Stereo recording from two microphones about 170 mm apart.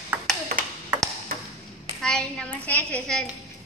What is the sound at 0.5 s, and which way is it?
Ping, 60° right (ahead or behind).